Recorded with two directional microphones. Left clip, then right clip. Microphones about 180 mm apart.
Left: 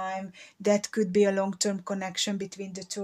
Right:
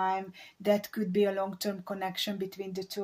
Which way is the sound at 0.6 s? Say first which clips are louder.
Left 3 dB; 45° left (ahead or behind).